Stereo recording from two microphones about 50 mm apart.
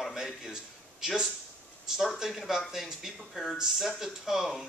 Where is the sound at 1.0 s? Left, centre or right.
Centre.